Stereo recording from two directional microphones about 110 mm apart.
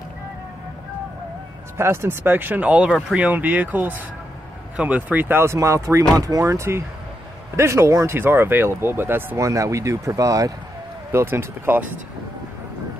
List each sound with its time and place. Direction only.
1.8 s speech: 25° right (ahead or behind)